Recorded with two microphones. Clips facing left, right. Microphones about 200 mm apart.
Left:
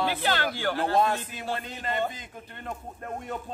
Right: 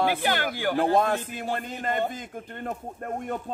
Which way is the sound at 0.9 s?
55° right (ahead or behind).